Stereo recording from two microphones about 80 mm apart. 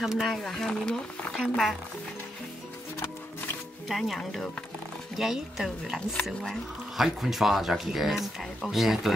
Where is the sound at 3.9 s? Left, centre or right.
Centre.